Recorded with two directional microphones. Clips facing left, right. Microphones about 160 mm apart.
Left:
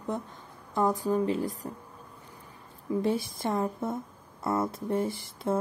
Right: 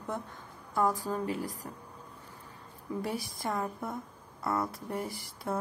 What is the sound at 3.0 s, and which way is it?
Speech, 25° left (ahead or behind).